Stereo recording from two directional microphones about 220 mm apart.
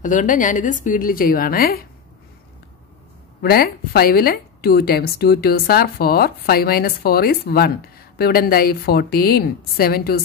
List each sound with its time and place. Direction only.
0.0 s a woman's voice: 35° left (ahead or behind)
3.4 s a woman's voice: 45° left (ahead or behind)